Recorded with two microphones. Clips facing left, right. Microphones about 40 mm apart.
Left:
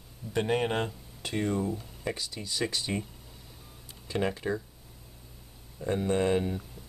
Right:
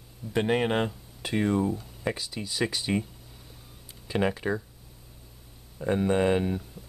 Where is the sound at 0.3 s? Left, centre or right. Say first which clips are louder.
Right 3 dB; centre.